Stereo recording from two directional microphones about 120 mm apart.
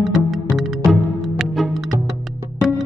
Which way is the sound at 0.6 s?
Centre (ahead or behind).